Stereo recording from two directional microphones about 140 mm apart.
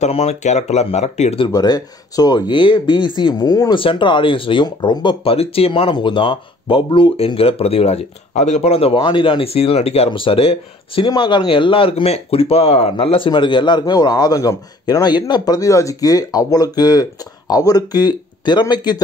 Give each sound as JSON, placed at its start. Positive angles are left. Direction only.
{"t": 0.0, "sound": "speech", "side_deg": 50}
{"t": 1.5, "sound": "speech", "side_deg": 25}